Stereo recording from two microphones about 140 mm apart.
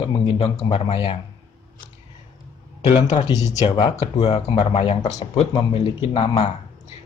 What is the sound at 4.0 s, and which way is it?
Speech, 50° left (ahead or behind).